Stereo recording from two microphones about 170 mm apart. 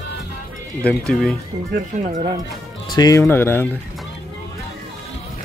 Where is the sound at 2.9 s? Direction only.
20° left (ahead or behind).